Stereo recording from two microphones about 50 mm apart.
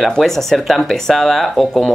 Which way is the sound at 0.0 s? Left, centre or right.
Centre.